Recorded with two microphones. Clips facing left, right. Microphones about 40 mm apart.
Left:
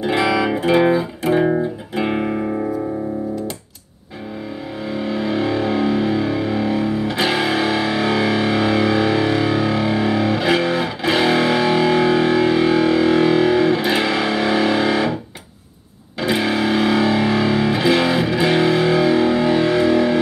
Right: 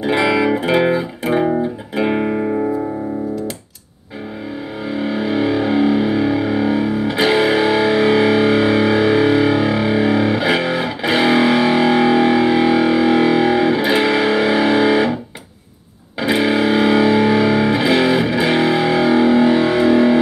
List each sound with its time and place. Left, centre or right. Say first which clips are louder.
0.0 s music: right 2 dB; centre
4.8 s music: right 2 dB; centre
16.2 s music: right 3 dB; centre